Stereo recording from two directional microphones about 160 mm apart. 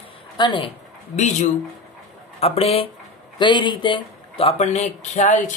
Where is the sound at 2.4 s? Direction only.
40° left (ahead or behind).